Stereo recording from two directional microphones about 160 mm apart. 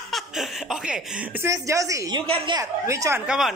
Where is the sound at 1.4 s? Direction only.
20° right (ahead or behind).